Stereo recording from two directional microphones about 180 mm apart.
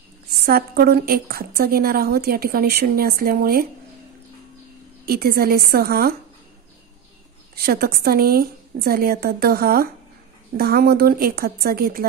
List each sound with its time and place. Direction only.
0.5 s a woman's voice: 60° right (ahead or behind)
5.0 s a woman's voice: 60° right (ahead or behind)
7.5 s a woman's voice: 60° right (ahead or behind)